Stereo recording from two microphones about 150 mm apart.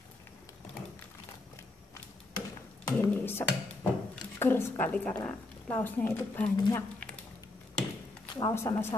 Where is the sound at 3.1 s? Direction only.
15° left (ahead or behind).